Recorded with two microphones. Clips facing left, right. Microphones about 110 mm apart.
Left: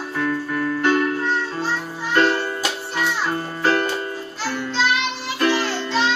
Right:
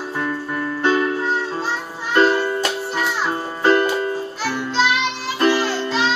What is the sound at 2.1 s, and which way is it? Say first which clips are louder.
Music: right 2 dB; 35° right (ahead or behind).